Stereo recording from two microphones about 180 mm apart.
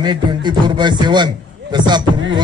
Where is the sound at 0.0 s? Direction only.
25° right (ahead or behind).